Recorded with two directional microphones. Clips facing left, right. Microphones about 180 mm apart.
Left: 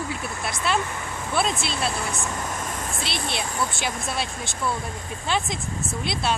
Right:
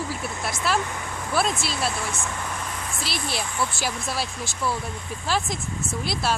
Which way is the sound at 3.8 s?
5° right (ahead or behind).